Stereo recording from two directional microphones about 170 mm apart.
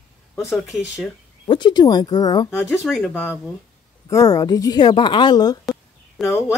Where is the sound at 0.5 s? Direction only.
Centre (ahead or behind).